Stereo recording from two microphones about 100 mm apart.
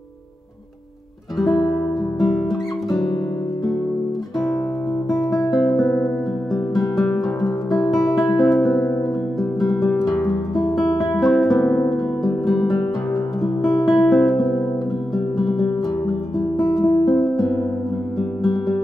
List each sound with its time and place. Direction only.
2.1 s music: centre (ahead or behind)
6.8 s music: centre (ahead or behind)
8.2 s music: 40° left (ahead or behind)
8.5 s music: centre (ahead or behind)
10.8 s guitar: 40° left (ahead or behind)
11.1 s music: centre (ahead or behind)
16.3 s guitar: centre (ahead or behind)
18.4 s music: centre (ahead or behind)